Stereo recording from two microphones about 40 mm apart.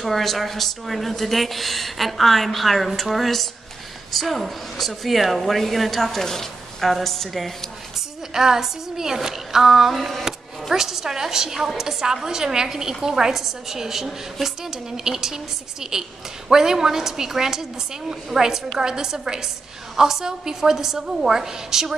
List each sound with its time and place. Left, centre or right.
0.0 s speech: centre
8.3 s speech: centre
9.9 s speech: centre
10.2 s speech: centre